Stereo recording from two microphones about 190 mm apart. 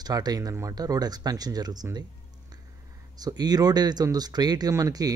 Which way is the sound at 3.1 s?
20° right (ahead or behind).